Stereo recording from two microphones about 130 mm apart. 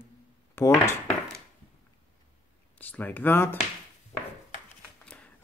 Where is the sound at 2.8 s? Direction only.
15° left (ahead or behind).